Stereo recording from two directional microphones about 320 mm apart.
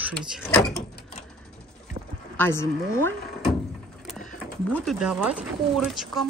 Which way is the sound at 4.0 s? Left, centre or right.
Centre.